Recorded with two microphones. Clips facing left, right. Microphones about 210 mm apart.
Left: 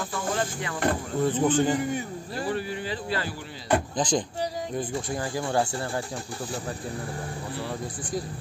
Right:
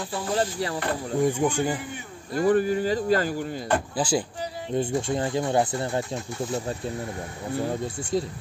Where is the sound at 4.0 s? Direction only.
10° right (ahead or behind).